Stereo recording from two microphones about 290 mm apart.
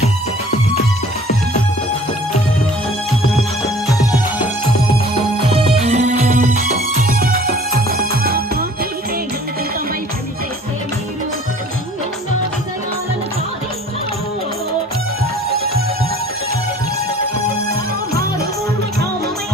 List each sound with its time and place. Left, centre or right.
3.3 s music: centre
5.9 s music: right